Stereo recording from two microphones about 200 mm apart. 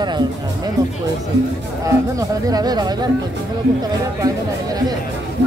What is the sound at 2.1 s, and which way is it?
Speech, 20° right (ahead or behind).